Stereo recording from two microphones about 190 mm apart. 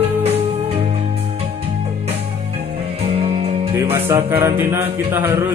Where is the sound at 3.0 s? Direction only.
30° right (ahead or behind).